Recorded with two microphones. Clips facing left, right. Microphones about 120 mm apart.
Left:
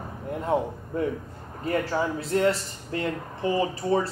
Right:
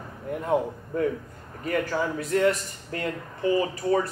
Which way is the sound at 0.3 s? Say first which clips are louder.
Right 1 dB; 25° left (ahead or behind).